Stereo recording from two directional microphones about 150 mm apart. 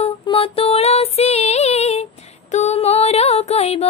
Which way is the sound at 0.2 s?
35° left (ahead or behind).